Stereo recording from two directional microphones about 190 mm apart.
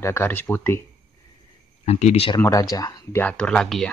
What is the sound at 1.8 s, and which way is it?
Speech, 35° left (ahead or behind).